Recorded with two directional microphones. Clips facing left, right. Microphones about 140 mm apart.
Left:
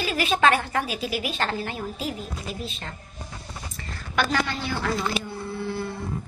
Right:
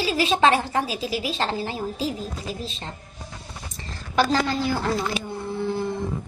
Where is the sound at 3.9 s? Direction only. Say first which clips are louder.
Right 4 dB; 35° right (ahead or behind).